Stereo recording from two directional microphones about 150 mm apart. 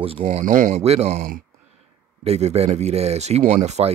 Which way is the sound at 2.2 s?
45° right (ahead or behind).